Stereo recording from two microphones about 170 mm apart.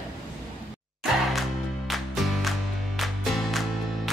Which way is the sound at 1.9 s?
Centre (ahead or behind).